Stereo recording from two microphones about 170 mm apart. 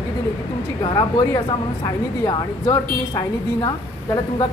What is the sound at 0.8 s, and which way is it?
A woman's voice, 25° left (ahead or behind).